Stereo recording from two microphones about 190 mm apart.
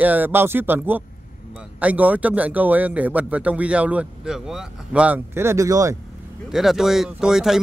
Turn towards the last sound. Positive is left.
turn(degrees=0)  # may be behind; listen again after turning